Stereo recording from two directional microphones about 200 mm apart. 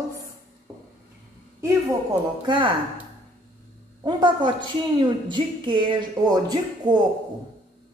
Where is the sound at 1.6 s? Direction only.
20° right (ahead or behind).